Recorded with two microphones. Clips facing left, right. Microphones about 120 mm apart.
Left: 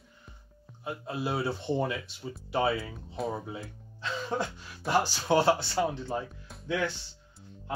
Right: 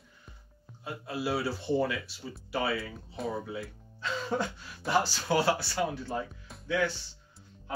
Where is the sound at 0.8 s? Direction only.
20° left (ahead or behind).